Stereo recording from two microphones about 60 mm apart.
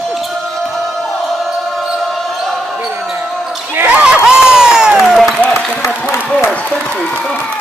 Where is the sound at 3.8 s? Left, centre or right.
Right.